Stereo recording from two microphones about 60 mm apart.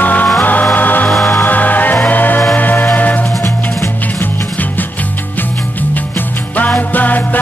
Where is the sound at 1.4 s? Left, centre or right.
Left.